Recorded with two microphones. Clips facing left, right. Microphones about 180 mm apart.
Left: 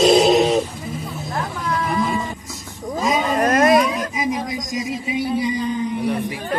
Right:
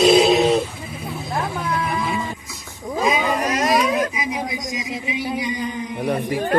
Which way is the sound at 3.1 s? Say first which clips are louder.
Left 3 dB; 50° left (ahead or behind).